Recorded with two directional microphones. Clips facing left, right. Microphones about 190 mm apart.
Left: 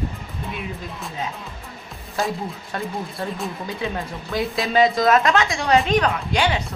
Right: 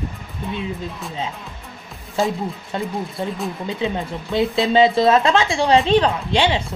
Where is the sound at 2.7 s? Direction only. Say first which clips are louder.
Right 3 dB; 20° right (ahead or behind).